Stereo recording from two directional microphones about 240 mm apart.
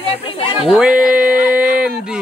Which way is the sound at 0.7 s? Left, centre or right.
Centre.